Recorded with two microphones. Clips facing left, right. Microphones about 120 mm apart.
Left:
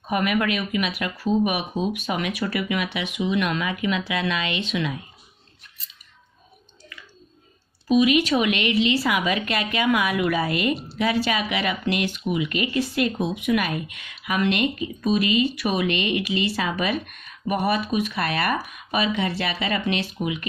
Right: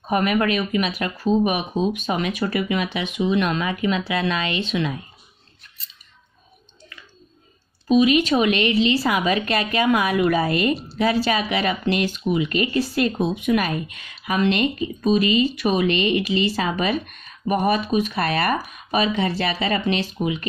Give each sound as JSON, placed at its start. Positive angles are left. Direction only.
{"t": 0.1, "sound": "speech", "side_deg": -35}
{"t": 7.9, "sound": "speech", "side_deg": -30}